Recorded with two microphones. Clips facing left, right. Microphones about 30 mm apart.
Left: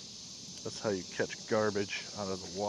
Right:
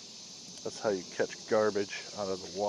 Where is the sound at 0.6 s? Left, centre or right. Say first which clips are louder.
Right 3 dB; centre.